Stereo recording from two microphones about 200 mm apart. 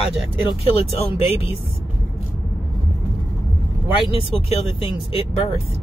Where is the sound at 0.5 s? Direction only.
30° left (ahead or behind).